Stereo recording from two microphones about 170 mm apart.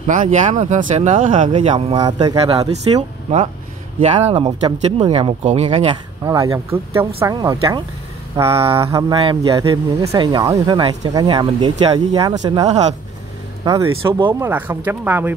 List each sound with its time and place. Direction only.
0.0 s speech: 50° right (ahead or behind)
1.3 s a man's voice: 35° right (ahead or behind)
4.0 s speech: 40° right (ahead or behind)
6.2 s a man's voice: 20° right (ahead or behind)
8.7 s speech: 15° right (ahead or behind)
9.2 s a man's voice: 30° right (ahead or behind)
11.7 s speech: 35° right (ahead or behind)
12.1 s a man's voice: 25° right (ahead or behind)